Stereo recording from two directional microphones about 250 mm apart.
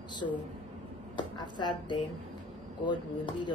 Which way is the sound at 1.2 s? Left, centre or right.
Centre.